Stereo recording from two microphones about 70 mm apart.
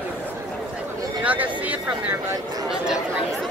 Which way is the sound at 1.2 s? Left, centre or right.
Right.